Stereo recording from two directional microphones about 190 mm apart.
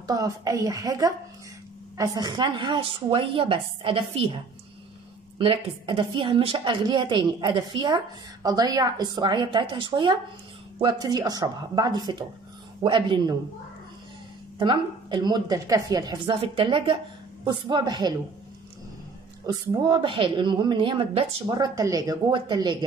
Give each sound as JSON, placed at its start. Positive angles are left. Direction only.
{"t": 0.0, "sound": "a woman's voice", "side_deg": -20}
{"t": 5.4, "sound": "a woman's voice", "side_deg": -30}
{"t": 14.6, "sound": "a woman's voice", "side_deg": -25}
{"t": 19.4, "sound": "a woman's voice", "side_deg": -25}